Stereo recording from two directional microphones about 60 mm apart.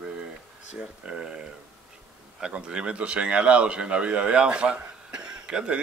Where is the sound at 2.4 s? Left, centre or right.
Centre.